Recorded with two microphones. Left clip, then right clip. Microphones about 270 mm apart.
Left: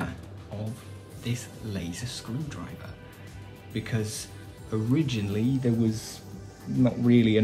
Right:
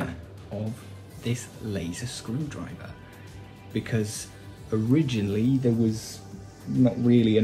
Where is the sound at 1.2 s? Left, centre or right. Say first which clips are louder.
Right 3 dB; centre.